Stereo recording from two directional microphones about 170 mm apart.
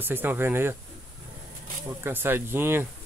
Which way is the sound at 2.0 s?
15° right (ahead or behind).